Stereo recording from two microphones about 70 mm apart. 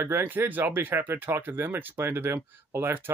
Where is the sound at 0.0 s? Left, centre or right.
Right.